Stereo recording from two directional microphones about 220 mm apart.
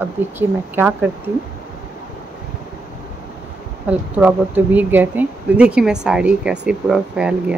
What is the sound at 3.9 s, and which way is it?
Speech, 5° right (ahead or behind).